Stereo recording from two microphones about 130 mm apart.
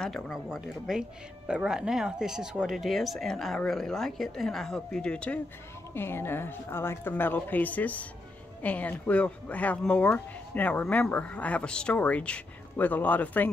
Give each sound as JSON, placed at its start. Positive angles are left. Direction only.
{"t": 0.0, "sound": "speech", "side_deg": 0}